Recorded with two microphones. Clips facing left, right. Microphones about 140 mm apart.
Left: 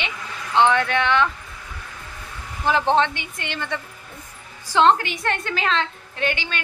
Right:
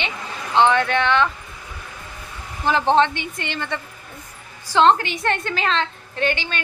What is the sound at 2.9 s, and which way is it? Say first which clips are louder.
A woman's voice: right 2 dB; 5° left (ahead or behind).